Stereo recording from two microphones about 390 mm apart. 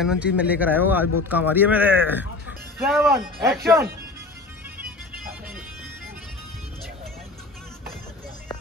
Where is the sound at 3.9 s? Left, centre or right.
Centre.